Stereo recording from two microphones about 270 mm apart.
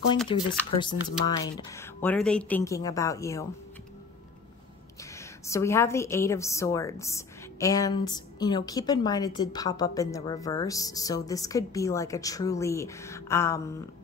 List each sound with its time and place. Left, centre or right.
0.3 s a woman's voice: centre
5.5 s a woman's voice: centre